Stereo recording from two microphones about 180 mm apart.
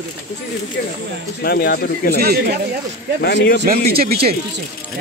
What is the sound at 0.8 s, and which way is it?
Speech, 55° left (ahead or behind).